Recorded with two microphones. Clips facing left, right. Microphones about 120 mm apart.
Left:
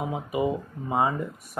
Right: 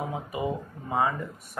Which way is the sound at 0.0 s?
20° left (ahead or behind).